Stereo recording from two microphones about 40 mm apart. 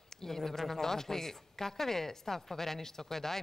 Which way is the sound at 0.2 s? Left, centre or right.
Centre.